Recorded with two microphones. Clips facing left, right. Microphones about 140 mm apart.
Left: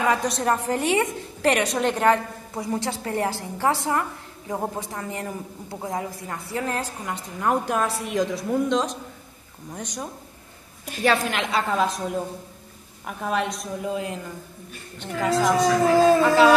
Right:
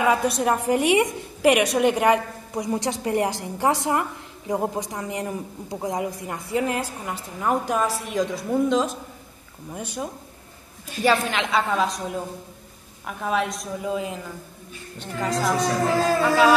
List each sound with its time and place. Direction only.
0.0 s a woman's voice: 10° right (ahead or behind)
7.1 s a woman's voice: centre (ahead or behind)